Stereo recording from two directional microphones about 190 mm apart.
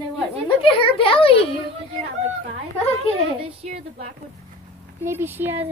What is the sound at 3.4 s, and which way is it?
Speech, 30° right (ahead or behind).